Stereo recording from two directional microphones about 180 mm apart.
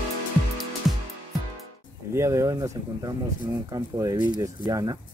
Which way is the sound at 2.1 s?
15° right (ahead or behind).